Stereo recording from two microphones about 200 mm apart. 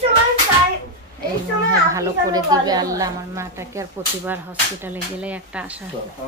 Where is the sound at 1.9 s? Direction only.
15° right (ahead or behind).